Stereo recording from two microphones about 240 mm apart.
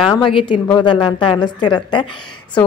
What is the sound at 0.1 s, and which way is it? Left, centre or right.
A woman's voice, left.